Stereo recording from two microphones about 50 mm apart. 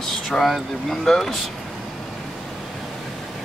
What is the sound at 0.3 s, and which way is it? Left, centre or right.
Speech, centre.